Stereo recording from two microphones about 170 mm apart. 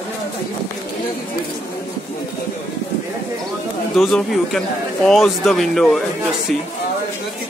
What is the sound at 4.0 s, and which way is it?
Speech, centre (ahead or behind).